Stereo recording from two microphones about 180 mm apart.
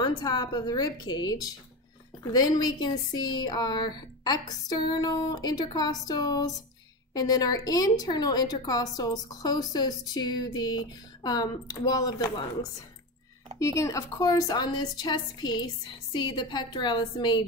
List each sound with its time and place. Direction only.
0.0 s a woman's voice: 25° left (ahead or behind)
13.6 s a woman's voice: 15° left (ahead or behind)